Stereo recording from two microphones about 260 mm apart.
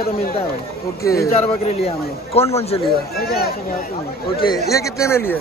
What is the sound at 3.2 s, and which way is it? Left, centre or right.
Speech, left.